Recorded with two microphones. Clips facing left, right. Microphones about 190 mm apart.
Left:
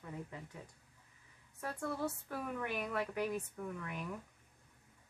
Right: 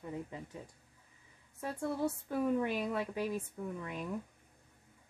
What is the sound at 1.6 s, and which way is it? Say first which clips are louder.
Speech: right 4 dB; 20° right (ahead or behind).